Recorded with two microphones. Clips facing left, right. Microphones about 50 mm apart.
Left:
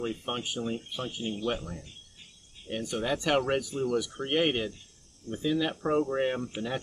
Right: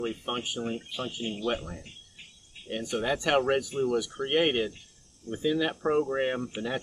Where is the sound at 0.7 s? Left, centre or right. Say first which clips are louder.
Right 1 dB; right.